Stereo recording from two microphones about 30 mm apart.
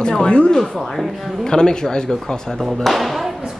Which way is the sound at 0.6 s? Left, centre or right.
Centre.